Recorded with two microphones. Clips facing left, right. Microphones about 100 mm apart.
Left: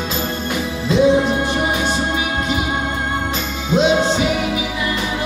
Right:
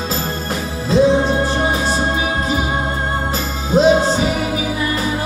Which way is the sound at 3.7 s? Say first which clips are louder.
Right 3 dB; 40° right (ahead or behind).